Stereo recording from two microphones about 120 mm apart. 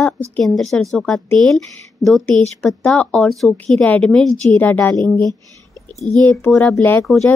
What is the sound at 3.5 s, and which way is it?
A woman's voice, 15° left (ahead or behind).